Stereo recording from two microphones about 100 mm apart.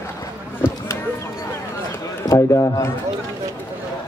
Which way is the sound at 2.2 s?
30° left (ahead or behind).